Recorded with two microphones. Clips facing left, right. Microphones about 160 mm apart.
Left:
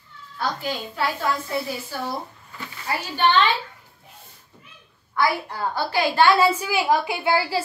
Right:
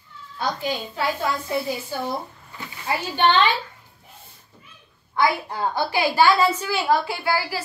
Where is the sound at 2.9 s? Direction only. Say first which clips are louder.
Right 2 dB; 20° right (ahead or behind).